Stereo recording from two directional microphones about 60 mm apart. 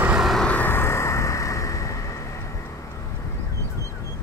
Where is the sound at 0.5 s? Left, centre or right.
Left.